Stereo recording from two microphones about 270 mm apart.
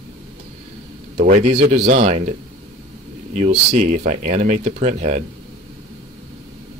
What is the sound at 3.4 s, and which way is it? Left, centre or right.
Speech, right.